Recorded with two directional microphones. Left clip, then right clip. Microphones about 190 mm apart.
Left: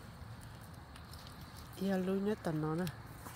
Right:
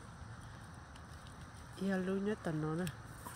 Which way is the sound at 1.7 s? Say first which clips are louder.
Left 2 dB; 5° left (ahead or behind).